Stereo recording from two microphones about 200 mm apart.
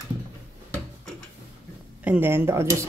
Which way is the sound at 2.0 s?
10° right (ahead or behind).